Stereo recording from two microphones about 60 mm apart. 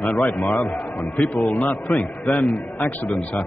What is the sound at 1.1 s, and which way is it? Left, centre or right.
A man's voice, left.